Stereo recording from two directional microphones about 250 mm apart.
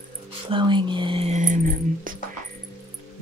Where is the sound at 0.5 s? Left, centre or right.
Centre.